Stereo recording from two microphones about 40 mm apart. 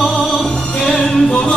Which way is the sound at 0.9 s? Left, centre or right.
Left.